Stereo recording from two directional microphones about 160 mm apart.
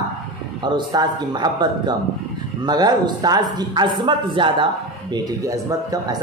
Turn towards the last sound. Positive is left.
turn(degrees=-20)  # may be behind; listen again after turning